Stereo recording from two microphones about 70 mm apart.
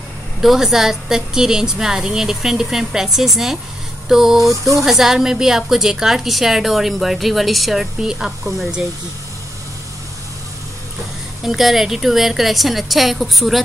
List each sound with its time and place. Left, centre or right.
0.4 s a woman's voice: centre
11.4 s a woman's voice: centre